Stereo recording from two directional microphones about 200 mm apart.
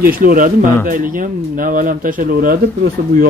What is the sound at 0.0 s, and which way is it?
Speech, 45° right (ahead or behind).